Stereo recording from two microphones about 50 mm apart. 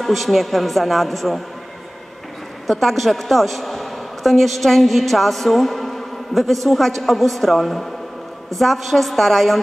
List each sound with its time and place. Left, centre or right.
0.0 s speech: centre
2.6 s a woman's voice: centre